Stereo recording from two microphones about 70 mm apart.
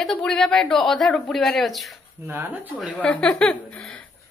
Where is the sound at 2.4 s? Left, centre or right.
Right.